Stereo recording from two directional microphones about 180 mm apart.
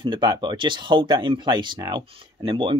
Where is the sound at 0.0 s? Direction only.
25° right (ahead or behind).